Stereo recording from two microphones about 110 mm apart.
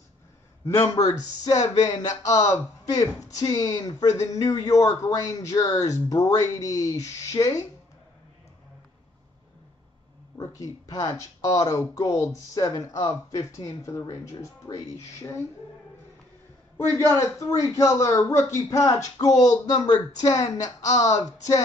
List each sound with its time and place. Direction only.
0.7 s speech: 30° left (ahead or behind)
10.3 s speech: 30° left (ahead or behind)
16.7 s speech: 25° left (ahead or behind)